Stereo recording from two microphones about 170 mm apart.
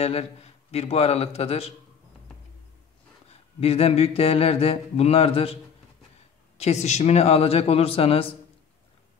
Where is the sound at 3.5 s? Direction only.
35° left (ahead or behind).